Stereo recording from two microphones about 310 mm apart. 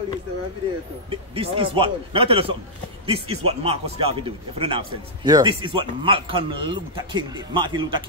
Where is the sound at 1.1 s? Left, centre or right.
Centre.